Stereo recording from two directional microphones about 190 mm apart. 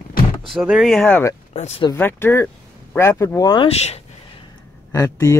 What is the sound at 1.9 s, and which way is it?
Speech, 10° left (ahead or behind).